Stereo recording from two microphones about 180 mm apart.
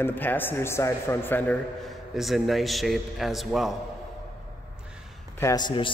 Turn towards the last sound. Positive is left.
turn(degrees=25)  # may be behind; listen again after turning